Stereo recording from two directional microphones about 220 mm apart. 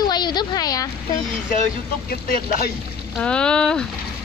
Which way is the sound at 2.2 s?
45° left (ahead or behind).